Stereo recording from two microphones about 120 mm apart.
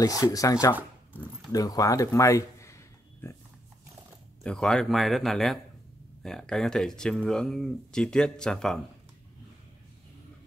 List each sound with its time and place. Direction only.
0.0 s speech: 30° left (ahead or behind)
1.5 s a sound: 30° left (ahead or behind)
4.4 s speech: 5° left (ahead or behind)